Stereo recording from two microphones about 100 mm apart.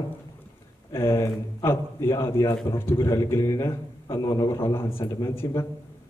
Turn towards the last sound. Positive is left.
turn(degrees=30)  # may be behind; listen again after turning